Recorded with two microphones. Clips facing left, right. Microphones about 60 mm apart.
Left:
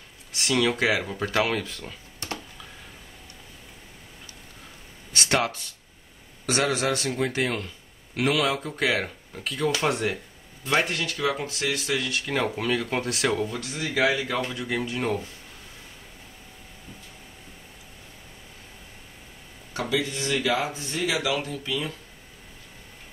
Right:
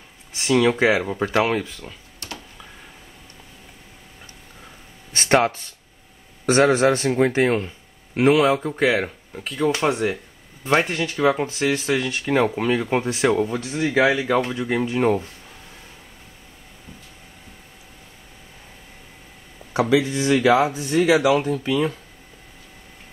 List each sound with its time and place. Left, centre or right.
0.4 s a man's voice: centre
1.6 s speech: centre
5.1 s a man's voice: right; by 10.1 s centre
10.6 s a man's voice: right
20.2 s speech: right
20.6 s a man's voice: right